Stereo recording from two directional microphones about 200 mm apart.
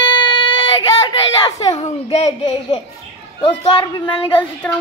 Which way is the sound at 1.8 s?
30° left (ahead or behind).